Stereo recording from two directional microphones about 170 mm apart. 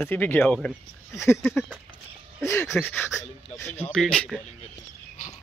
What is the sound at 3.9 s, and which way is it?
Speech, 5° left (ahead or behind).